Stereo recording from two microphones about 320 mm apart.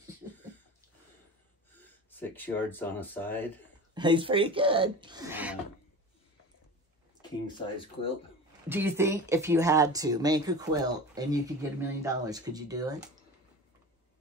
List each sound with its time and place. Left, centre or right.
1.7 s speech: centre
3.9 s speech: centre
7.2 s speech: centre
8.6 s speech: centre